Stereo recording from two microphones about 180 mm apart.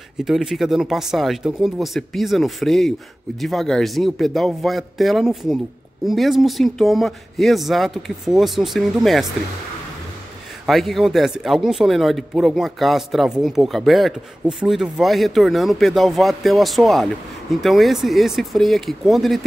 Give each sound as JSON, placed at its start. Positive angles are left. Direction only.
{"t": 0.2, "sound": "speech", "side_deg": 0}
{"t": 10.7, "sound": "speech", "side_deg": 0}